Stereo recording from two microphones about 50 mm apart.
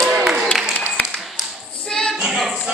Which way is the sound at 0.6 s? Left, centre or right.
Centre.